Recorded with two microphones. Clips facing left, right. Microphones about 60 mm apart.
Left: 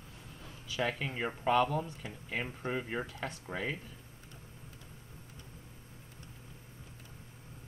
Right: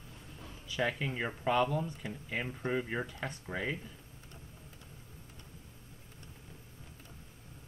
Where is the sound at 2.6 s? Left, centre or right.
Centre.